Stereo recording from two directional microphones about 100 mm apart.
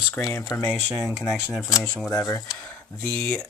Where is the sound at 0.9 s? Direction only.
5° right (ahead or behind).